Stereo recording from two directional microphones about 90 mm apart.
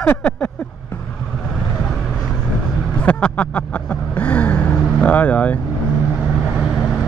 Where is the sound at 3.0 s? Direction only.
15° left (ahead or behind).